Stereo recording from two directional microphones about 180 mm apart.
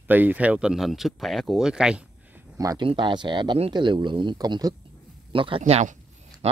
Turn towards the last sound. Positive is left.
turn(degrees=-40)  # may be behind; listen again after turning